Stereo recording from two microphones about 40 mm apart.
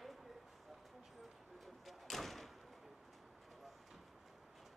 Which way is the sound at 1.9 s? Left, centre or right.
Centre.